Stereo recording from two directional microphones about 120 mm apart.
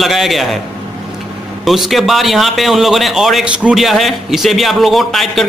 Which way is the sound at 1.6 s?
Centre (ahead or behind).